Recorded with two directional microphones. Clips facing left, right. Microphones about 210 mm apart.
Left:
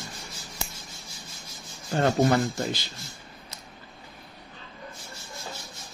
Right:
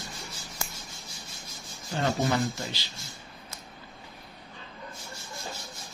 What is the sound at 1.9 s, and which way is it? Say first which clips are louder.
Speech: left 5 dB; 50° left (ahead or behind).